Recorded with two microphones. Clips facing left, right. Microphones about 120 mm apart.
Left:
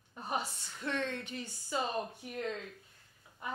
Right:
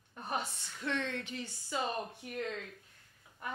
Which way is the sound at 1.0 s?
45° left (ahead or behind).